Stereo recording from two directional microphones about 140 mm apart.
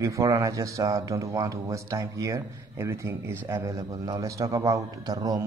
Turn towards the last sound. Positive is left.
turn(degrees=-25)  # may be behind; listen again after turning